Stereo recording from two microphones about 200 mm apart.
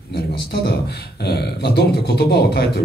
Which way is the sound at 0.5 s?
55° left (ahead or behind).